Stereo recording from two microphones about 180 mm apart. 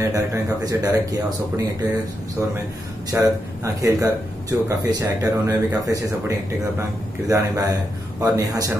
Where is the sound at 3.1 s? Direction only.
15° right (ahead or behind).